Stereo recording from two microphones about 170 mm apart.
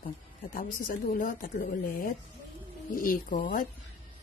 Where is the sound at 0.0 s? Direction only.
55° left (ahead or behind).